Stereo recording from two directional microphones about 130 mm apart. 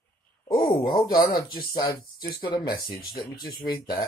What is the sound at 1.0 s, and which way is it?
Speech, 30° left (ahead or behind).